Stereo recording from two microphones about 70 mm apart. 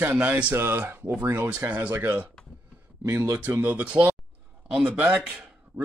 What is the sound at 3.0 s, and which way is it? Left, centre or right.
Speech, right.